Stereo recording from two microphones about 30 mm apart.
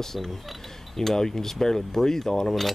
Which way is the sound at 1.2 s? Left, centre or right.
Centre.